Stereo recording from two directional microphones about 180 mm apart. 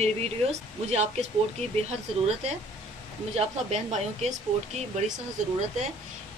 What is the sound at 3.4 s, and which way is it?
Speech, 35° right (ahead or behind).